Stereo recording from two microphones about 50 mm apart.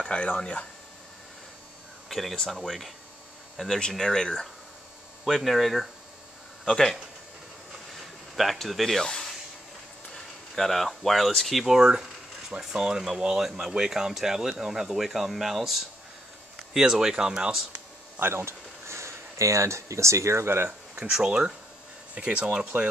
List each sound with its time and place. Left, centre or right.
0.0 s speech: left
2.0 s a sound: centre
2.6 s speech: centre
8.4 s speech: centre
11.6 s speech: centre
18.2 s speech: right
21.0 s speech: centre